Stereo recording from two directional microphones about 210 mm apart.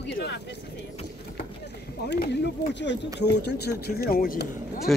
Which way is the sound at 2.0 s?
50° left (ahead or behind).